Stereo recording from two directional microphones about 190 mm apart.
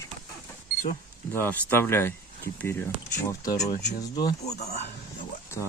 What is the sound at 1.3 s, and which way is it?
Speech, 10° left (ahead or behind).